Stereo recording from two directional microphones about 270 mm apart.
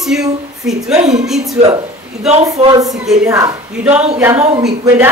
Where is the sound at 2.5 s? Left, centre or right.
Centre.